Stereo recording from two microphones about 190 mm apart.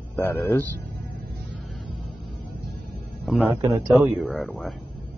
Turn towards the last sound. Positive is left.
turn(degrees=5)  # may be behind; listen again after turning